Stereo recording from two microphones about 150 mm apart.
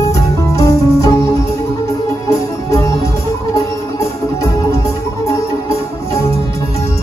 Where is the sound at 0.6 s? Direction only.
20° left (ahead or behind).